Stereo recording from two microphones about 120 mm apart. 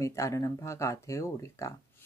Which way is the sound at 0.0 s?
25° left (ahead or behind).